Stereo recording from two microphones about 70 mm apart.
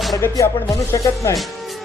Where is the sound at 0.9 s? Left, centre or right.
Left.